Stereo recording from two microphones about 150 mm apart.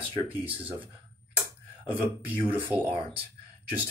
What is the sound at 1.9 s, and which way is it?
Speech, 10° right (ahead or behind).